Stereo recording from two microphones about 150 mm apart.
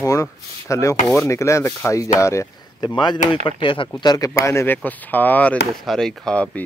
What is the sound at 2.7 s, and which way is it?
Speech, 30° left (ahead or behind).